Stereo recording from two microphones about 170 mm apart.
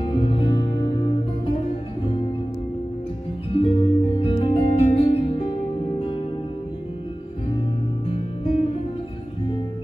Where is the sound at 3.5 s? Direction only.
35° left (ahead or behind).